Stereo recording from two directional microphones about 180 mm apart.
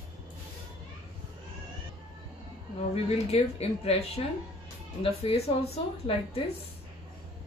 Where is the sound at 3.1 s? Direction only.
35° left (ahead or behind).